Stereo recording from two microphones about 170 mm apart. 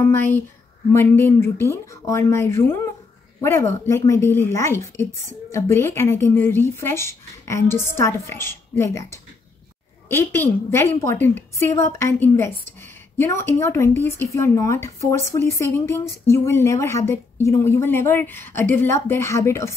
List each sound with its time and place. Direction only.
0.1 s a woman's voice: 10° left (ahead or behind)